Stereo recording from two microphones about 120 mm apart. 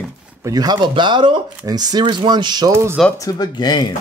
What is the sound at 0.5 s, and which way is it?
Speech, 35° right (ahead or behind).